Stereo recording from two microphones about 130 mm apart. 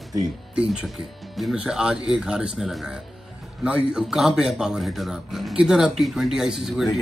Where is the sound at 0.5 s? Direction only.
5° right (ahead or behind).